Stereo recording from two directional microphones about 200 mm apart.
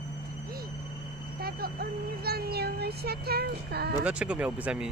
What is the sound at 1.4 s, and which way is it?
Speech, 50° right (ahead or behind).